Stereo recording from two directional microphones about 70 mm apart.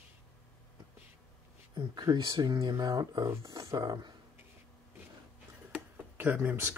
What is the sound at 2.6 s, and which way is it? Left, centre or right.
Speech, right.